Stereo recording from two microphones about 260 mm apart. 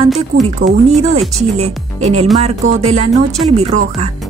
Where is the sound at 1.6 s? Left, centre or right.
Right.